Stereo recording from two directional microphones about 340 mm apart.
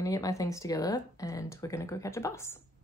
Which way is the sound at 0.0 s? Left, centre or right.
Centre.